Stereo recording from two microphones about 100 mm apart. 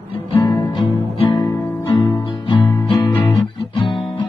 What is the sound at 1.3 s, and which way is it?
Guitar, 30° left (ahead or behind).